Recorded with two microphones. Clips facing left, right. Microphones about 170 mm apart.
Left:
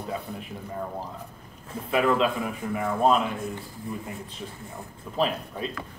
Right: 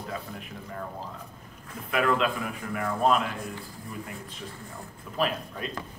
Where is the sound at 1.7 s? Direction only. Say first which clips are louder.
Left 3 dB; 25° left (ahead or behind).